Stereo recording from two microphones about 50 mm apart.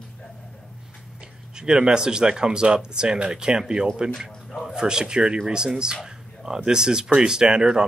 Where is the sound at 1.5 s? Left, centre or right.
Centre.